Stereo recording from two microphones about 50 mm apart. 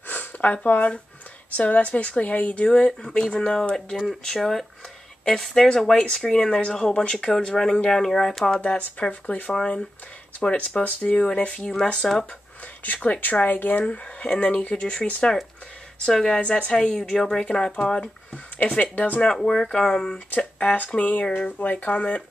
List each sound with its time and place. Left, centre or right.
0.1 s a woman's voice: left
2.7 s a woman's voice: centre
3.7 s speech: centre
8.5 s a woman's voice: left
11.0 s a woman's voice: left; by 12.3 s centre
12.8 s speech: left
13.8 s a woman's voice: left
16.3 s a woman's voice: left
19.2 s speech: centre
20.3 s a woman's voice: left